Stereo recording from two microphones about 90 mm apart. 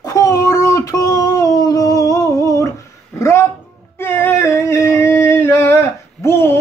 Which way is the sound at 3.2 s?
30° left (ahead or behind).